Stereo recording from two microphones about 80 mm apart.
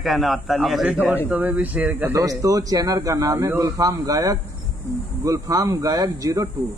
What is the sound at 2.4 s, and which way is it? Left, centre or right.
Speech, right.